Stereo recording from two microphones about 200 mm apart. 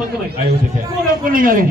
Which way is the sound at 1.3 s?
45° right (ahead or behind).